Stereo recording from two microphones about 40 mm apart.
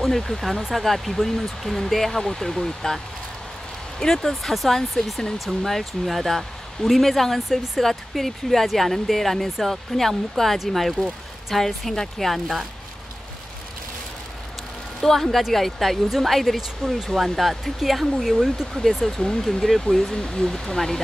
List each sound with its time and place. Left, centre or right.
0.0 s speech: centre
4.0 s speech: centre
7.4 s speech: centre
15.0 s speech: centre
18.8 s speech: centre